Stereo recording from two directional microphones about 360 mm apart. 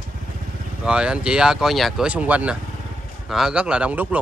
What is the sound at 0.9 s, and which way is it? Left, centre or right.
Speech, centre.